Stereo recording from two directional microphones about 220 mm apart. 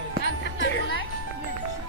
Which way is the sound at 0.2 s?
55° left (ahead or behind).